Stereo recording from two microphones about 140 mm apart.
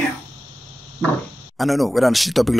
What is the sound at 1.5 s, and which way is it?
Speech, centre (ahead or behind).